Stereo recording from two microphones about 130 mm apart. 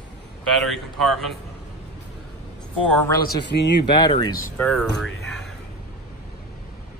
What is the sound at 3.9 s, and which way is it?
Speech, 35° left (ahead or behind).